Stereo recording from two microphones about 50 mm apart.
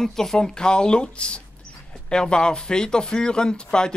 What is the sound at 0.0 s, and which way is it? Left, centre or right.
A man's voice, centre.